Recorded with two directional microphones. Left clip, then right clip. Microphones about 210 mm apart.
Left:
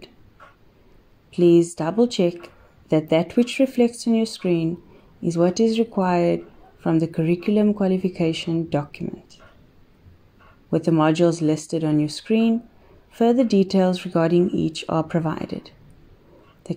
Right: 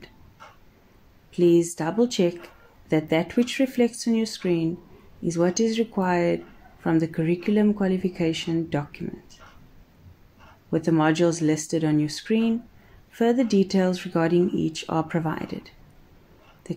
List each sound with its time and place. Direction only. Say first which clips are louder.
1.3 s speech: left 3 dB; 20° left (ahead or behind)
10.7 s speech: left 3 dB; 20° left (ahead or behind)